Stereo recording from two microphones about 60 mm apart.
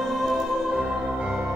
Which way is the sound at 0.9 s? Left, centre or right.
Centre.